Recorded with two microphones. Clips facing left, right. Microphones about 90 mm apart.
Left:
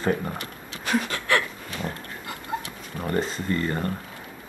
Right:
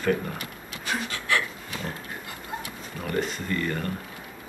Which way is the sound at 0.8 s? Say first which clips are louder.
Left 5 dB; 55° left (ahead or behind).